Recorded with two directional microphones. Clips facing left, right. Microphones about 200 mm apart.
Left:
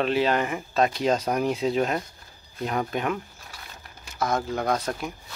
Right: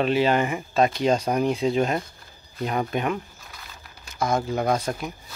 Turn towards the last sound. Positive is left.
turn(degrees=0)  # may be behind; listen again after turning